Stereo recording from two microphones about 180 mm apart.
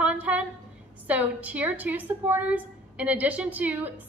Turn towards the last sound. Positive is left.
turn(degrees=-10)  # may be behind; listen again after turning